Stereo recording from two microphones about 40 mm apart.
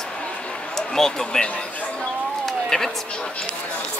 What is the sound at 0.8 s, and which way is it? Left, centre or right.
Speech, centre.